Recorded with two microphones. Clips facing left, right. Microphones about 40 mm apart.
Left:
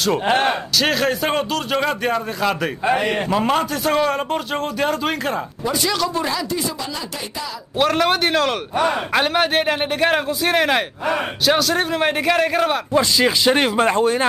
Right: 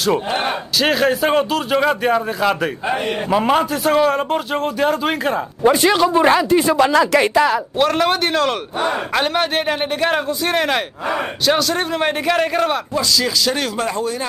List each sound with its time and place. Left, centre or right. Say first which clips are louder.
0.3 s a man's voice: left 3 dB; left
0.7 s a man's voice: right 5 dB; centre
2.9 s a man's voice: left 4 dB; left
3.3 s a man's voice: right 3 dB; centre
5.6 s speech: right 10 dB; right
5.9 s speech: right 7 dB; right
6.2 s speech: right 10 dB; right
6.8 s speech: right 15 dB; right
7.7 s a man's voice: right 1 dB; centre
12.9 s speech: left 2 dB; left